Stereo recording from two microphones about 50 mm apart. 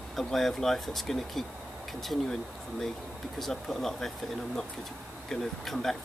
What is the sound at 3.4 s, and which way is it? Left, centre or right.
Speech, centre.